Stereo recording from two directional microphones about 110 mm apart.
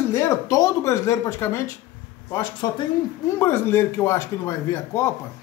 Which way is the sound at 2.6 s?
35° left (ahead or behind).